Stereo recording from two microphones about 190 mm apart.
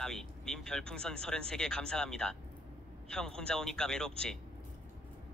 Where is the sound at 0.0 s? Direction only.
5° left (ahead or behind).